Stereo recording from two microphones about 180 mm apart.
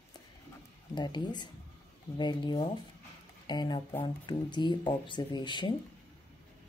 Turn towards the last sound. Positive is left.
turn(degrees=25)  # may be behind; listen again after turning